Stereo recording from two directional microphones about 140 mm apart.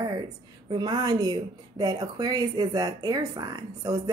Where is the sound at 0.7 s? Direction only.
30° right (ahead or behind).